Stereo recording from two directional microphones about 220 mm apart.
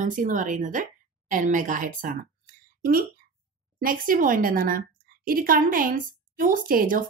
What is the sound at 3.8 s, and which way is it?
A woman's voice, 40° right (ahead or behind).